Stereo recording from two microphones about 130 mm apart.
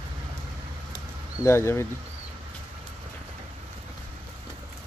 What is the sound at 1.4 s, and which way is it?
Speech, 20° left (ahead or behind).